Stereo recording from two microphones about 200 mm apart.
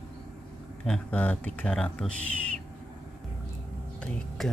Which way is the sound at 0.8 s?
5° left (ahead or behind).